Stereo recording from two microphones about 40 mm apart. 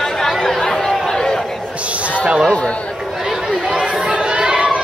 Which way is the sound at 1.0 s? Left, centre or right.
Centre.